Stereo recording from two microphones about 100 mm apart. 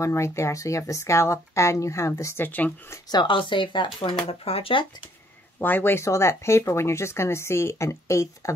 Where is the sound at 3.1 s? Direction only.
50° left (ahead or behind).